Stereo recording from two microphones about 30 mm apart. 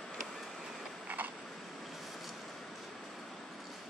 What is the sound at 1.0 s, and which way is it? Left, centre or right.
Tick-tock, right.